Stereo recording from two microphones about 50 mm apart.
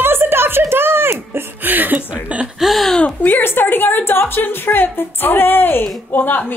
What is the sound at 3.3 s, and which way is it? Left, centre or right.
A woman's voice, left.